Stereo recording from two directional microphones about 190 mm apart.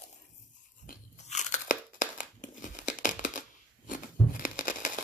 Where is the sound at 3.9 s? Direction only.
45° left (ahead or behind).